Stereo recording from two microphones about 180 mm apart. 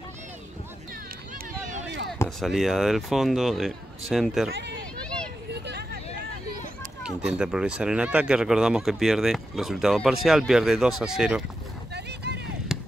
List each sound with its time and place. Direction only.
2.2 s speech: centre (ahead or behind)
4.5 s speech: 75° right (ahead or behind)
5.5 s hubbub: 65° right (ahead or behind)
7.0 s speech: 5° right (ahead or behind)
11.9 s vehicle: 70° right (ahead or behind)
12.7 s a sound: centre (ahead or behind)